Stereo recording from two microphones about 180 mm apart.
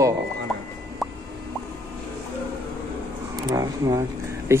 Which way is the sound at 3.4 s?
20° right (ahead or behind).